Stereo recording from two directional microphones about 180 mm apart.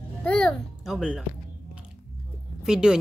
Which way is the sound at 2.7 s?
5° right (ahead or behind).